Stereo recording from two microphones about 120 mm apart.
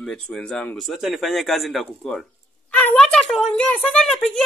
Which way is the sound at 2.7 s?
10° left (ahead or behind).